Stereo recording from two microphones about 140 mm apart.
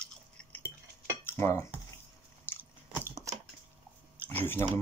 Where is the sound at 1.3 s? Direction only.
20° left (ahead or behind).